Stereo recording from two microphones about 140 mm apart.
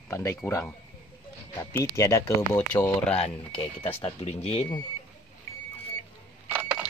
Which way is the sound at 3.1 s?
40° left (ahead or behind).